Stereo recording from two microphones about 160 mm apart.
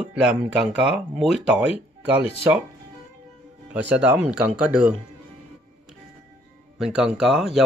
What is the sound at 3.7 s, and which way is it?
Speech, 10° right (ahead or behind).